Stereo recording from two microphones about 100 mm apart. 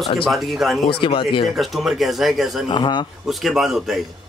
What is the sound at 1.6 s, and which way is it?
Speech, centre (ahead or behind).